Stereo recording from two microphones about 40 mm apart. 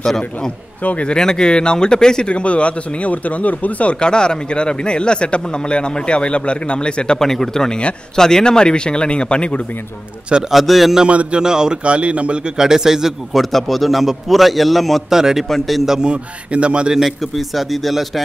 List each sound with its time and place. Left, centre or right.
0.0 s speech: centre
2.2 s speech: left
4.0 s speech: left
7.2 s speech: centre; by 9.6 s left
10.5 s a man's voice: centre
11.1 s a man's voice: right
11.4 s a man's voice: centre
11.8 s a man's voice: right
12.5 s a man's voice: centre
13.4 s a man's voice: centre
15.0 s a man's voice: centre
15.4 s a man's voice: centre
16.0 s a man's voice: right
16.9 s a man's voice: centre